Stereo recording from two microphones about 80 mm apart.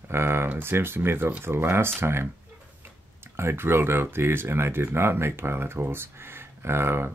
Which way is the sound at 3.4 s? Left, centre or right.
Right.